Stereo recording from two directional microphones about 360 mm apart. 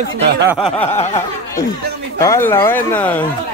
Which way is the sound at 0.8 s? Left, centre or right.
Centre.